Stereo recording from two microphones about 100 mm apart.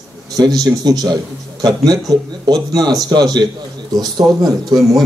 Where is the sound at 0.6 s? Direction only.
40° right (ahead or behind).